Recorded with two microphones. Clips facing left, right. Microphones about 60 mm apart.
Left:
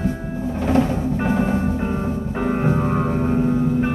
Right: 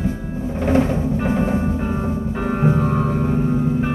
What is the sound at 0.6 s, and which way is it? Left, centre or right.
Music, right.